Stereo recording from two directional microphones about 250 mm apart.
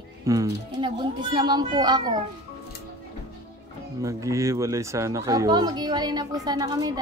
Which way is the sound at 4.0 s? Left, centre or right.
Centre.